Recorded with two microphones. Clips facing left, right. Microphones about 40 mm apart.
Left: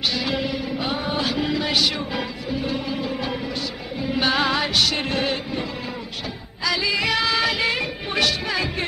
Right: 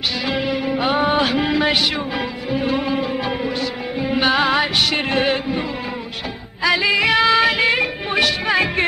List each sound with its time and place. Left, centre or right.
0.3 s music: right
0.7 s music: right
6.6 s music: right
8.5 s music: right